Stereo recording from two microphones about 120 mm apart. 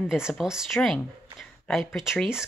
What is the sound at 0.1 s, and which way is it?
Speech, 5° right (ahead or behind).